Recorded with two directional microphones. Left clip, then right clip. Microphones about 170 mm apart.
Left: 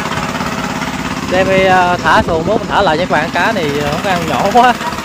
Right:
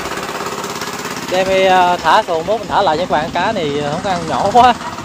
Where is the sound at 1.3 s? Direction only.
20° right (ahead or behind).